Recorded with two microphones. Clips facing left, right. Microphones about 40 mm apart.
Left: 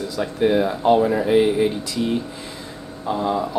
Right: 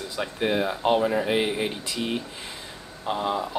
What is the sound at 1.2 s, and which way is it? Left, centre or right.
Speech, right.